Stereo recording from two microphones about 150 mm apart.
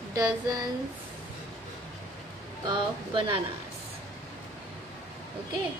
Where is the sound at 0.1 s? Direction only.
25° right (ahead or behind).